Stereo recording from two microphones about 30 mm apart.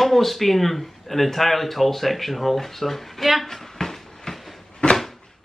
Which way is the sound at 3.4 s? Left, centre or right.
Centre.